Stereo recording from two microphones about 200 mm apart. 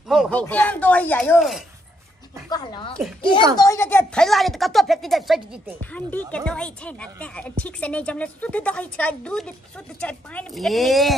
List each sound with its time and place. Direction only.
0.1 s speech: 5° left (ahead or behind)
2.5 s speech: 25° left (ahead or behind); by 5.8 s 5° right (ahead or behind)
5.8 s speech: 10° left (ahead or behind)